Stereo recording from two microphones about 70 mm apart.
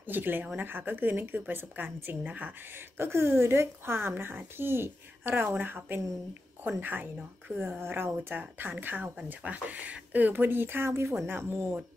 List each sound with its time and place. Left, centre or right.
0.0 s speech: right
3.0 s speech: right